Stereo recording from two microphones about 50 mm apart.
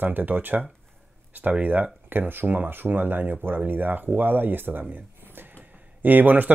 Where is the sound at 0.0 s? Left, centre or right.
Right.